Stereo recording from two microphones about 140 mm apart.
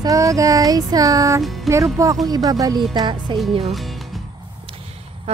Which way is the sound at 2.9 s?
30° right (ahead or behind).